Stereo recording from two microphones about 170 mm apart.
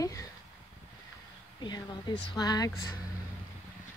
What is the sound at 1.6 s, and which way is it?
Speech, 25° left (ahead or behind).